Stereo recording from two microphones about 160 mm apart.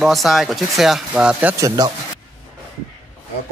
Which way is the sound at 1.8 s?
25° right (ahead or behind).